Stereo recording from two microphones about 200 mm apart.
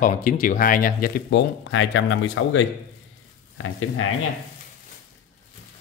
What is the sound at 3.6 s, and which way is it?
Speech, 90° left.